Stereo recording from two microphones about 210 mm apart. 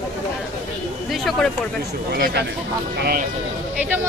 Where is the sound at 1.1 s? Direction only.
Centre (ahead or behind).